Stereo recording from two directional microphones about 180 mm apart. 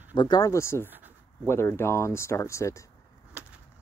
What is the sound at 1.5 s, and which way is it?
Speech, 15° left (ahead or behind).